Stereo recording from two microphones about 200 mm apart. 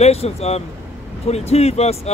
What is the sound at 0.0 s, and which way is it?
Speech, 30° left (ahead or behind).